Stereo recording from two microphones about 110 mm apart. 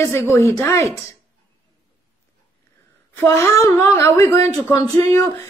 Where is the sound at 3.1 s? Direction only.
25° left (ahead or behind).